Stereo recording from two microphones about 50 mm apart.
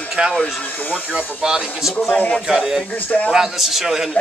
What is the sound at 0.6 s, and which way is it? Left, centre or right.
Speech, left.